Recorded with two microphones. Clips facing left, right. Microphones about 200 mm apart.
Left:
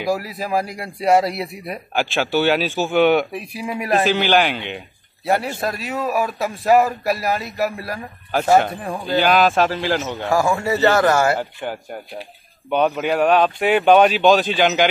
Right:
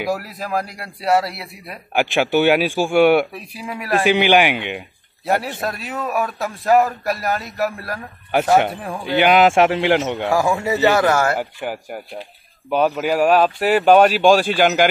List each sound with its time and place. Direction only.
0.0 s speech: centre (ahead or behind); by 1.8 s 20° left (ahead or behind)
2.0 s speech: 15° right (ahead or behind)
3.3 s speech: 15° left (ahead or behind)
4.0 s speech: 15° right (ahead or behind)
5.2 s a man's voice: centre (ahead or behind)
9.2 s a man's voice: 20° right (ahead or behind)